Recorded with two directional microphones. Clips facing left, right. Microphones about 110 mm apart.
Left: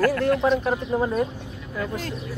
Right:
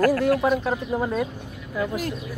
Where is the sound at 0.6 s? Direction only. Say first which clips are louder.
Left 1 dB; 5° left (ahead or behind).